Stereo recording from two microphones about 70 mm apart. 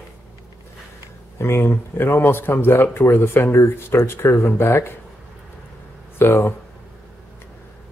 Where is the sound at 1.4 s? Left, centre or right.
Left.